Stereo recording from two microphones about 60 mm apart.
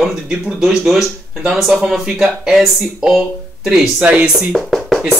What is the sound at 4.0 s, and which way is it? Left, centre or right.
Speech, right.